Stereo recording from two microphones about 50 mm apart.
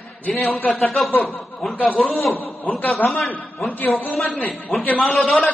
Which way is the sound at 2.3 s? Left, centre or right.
Left.